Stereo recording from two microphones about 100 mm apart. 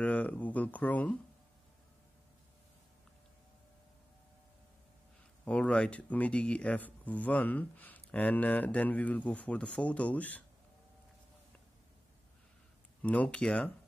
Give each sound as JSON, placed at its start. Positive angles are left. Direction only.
{"t": 0.0, "sound": "speech", "side_deg": 15}
{"t": 5.4, "sound": "speech", "side_deg": 15}
{"t": 13.0, "sound": "speech", "side_deg": 15}